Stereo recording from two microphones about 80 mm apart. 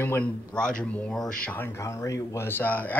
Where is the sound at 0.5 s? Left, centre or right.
Centre.